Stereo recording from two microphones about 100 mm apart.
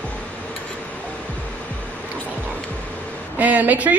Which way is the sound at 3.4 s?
15° right (ahead or behind).